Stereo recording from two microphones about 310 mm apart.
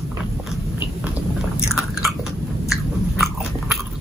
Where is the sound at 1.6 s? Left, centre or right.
Centre.